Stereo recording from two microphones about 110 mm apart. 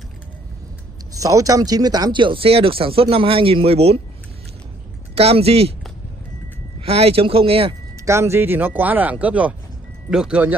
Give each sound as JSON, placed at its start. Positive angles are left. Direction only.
{"t": 1.1, "sound": "speech", "side_deg": -30}
{"t": 5.1, "sound": "speech", "side_deg": -65}
{"t": 6.8, "sound": "speech", "side_deg": -65}
{"t": 8.0, "sound": "speech", "side_deg": -25}